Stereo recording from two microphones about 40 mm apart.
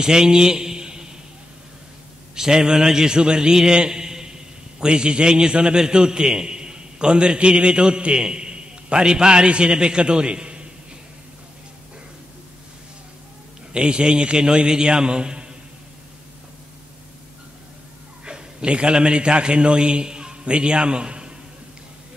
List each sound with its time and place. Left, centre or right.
0.0 s a sound: centre
2.3 s a man's voice: centre
13.7 s a man's voice: right
18.2 s a man's voice: right